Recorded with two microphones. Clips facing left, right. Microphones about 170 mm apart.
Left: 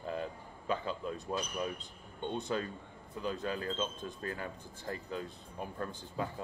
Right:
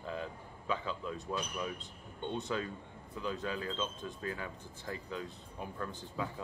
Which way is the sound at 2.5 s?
45° left (ahead or behind).